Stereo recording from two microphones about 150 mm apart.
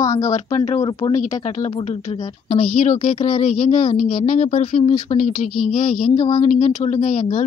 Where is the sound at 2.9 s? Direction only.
40° left (ahead or behind).